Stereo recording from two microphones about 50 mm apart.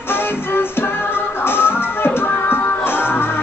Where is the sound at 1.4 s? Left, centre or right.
Left.